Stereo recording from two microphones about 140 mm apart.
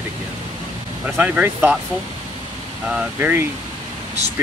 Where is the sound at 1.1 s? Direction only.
10° right (ahead or behind).